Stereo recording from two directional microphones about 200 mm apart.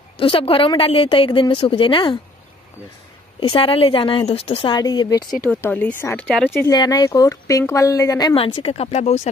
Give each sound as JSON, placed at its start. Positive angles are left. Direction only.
{"t": 0.2, "sound": "speech", "side_deg": 25}
{"t": 3.3, "sound": "speech", "side_deg": 25}
{"t": 5.5, "sound": "speech", "side_deg": 10}